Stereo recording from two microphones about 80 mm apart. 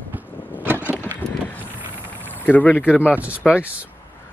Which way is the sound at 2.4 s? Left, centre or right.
Centre.